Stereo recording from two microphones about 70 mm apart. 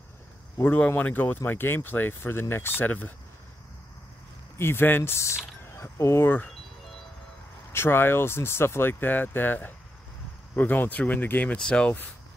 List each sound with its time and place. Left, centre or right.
0.6 s speech: left
4.6 s speech: left
7.7 s speech: left